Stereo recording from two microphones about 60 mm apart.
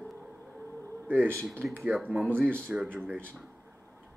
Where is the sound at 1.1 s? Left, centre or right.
Right.